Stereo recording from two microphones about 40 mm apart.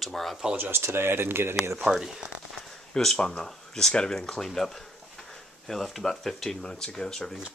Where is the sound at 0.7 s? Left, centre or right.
Right.